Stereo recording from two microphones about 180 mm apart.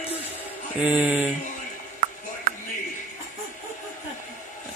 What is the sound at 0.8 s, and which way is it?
Mantra, 10° right (ahead or behind).